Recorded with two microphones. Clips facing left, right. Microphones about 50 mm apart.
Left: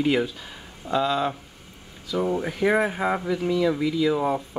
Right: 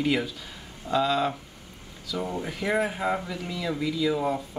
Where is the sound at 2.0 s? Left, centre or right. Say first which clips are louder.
Left 6 dB; centre.